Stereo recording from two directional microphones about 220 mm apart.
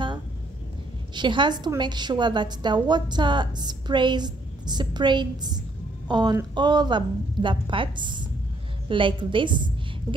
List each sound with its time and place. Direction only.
1.1 s a woman's voice: 20° right (ahead or behind)